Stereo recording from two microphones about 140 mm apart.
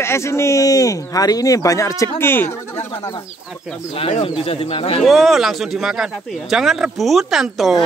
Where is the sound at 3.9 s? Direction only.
40° left (ahead or behind).